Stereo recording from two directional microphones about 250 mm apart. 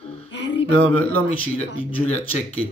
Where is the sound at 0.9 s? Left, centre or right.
Centre.